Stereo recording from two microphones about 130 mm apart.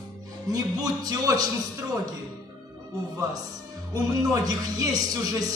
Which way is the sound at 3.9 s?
25° right (ahead or behind).